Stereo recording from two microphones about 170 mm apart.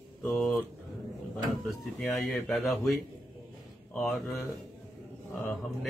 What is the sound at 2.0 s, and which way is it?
Speech, 5° left (ahead or behind).